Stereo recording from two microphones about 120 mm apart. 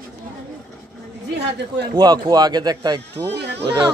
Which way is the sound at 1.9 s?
35° right (ahead or behind).